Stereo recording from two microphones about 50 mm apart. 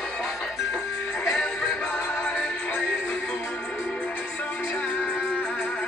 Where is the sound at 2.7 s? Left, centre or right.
Left.